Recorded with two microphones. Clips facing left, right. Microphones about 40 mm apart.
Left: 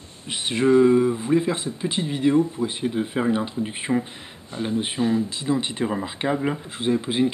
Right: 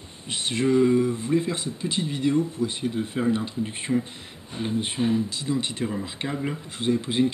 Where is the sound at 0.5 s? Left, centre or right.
Centre.